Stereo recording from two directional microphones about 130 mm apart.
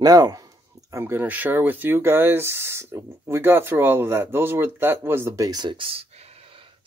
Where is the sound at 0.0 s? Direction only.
30° right (ahead or behind).